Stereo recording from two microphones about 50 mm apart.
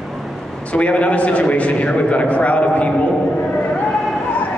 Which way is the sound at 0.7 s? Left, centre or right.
Left.